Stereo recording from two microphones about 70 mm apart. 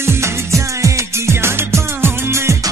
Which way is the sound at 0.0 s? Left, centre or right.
Right.